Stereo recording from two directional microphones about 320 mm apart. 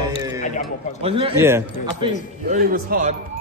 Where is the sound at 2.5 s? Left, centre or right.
Right.